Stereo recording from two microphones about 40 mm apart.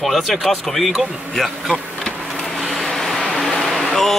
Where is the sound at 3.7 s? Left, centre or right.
Centre.